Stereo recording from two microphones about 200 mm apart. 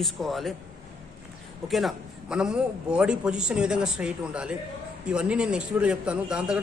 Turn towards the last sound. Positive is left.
turn(degrees=-5)  # may be behind; listen again after turning